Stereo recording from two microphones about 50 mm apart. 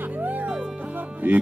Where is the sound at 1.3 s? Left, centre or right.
Right.